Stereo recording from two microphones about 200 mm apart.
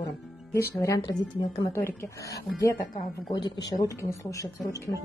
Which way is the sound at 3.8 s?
15° left (ahead or behind).